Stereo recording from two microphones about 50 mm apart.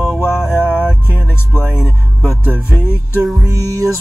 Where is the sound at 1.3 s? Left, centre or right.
Left.